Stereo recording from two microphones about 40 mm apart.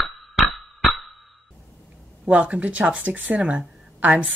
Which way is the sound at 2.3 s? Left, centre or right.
Right.